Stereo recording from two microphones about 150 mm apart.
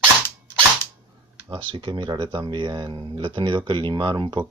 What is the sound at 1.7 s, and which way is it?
Speech, 30° right (ahead or behind).